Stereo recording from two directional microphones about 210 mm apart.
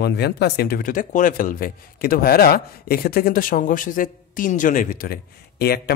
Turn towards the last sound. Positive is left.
turn(degrees=50)  # may be behind; listen again after turning